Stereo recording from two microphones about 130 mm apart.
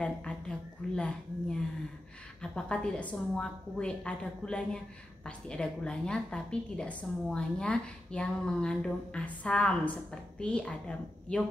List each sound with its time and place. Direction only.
0.0 s a woman's voice: 10° left (ahead or behind)